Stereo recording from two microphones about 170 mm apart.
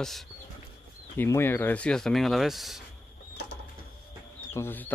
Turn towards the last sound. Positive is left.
turn(degrees=10)  # may be behind; listen again after turning